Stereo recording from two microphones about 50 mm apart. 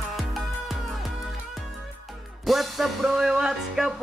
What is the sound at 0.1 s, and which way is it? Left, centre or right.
Music, centre.